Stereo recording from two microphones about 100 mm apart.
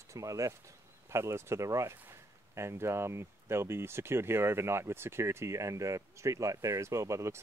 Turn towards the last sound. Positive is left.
turn(degrees=-30)  # may be behind; listen again after turning